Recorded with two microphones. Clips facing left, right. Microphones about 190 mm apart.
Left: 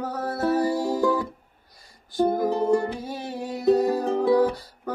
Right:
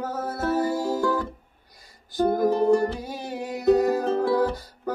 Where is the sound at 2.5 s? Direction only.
20° left (ahead or behind).